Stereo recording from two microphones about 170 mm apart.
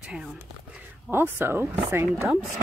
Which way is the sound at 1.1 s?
15° right (ahead or behind).